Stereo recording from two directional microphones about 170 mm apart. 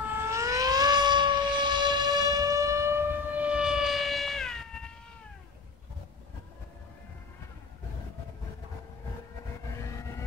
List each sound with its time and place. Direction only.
0.2 s civil defense siren: 15° right (ahead or behind); by 4.9 s 5° left (ahead or behind)